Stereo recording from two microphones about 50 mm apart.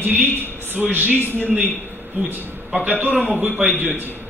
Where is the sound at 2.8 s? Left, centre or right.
Right.